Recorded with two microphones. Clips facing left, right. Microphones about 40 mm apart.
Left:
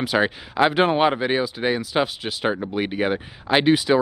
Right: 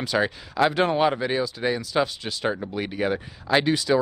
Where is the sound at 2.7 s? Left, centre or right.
Left.